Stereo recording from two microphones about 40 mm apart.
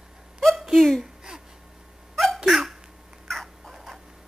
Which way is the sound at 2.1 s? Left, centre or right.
Centre.